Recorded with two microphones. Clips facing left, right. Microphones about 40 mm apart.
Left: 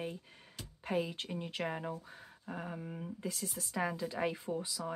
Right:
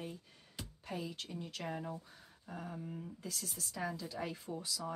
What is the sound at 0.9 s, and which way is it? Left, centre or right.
Speech, left.